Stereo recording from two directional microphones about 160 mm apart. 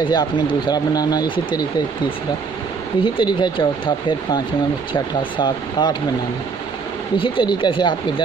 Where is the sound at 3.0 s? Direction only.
30° left (ahead or behind).